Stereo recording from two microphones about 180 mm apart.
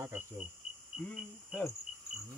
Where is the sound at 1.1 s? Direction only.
Centre (ahead or behind).